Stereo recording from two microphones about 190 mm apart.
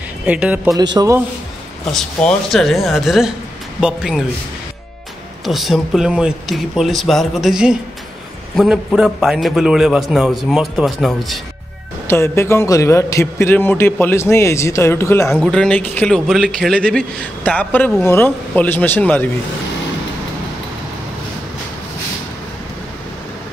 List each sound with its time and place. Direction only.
0.3 s speech: 5° right (ahead or behind)
0.9 s speech: 15° right (ahead or behind)
1.9 s a man's voice: centre (ahead or behind)
5.4 s a man's voice: centre (ahead or behind)
12.1 s a man's voice: 15° left (ahead or behind)
15.3 s a man's voice: centre (ahead or behind)